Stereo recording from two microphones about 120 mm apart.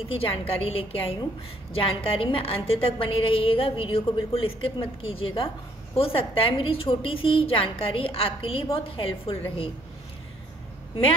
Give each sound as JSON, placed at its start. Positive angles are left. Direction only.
{"t": 0.1, "sound": "a woman's voice", "side_deg": 50}